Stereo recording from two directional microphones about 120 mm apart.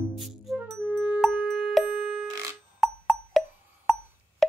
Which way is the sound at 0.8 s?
10° right (ahead or behind).